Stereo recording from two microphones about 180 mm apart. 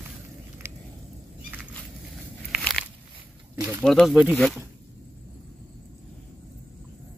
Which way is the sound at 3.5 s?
15° right (ahead or behind).